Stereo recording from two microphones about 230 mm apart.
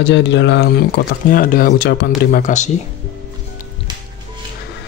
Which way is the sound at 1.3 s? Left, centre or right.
Left.